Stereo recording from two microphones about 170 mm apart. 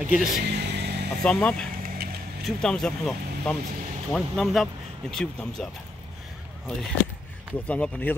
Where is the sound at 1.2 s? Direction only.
5° left (ahead or behind).